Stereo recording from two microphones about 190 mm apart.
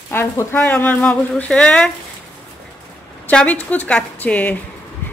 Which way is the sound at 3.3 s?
5° left (ahead or behind).